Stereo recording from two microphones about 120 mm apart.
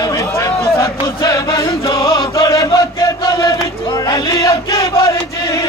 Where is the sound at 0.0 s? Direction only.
25° left (ahead or behind).